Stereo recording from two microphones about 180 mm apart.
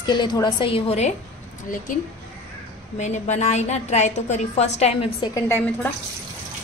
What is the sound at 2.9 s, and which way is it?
A woman's voice, 40° left (ahead or behind).